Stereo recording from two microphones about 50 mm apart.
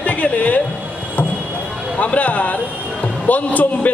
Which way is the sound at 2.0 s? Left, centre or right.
Left.